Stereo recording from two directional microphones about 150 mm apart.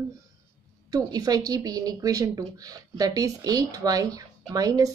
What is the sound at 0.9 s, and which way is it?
Speech, 25° right (ahead or behind).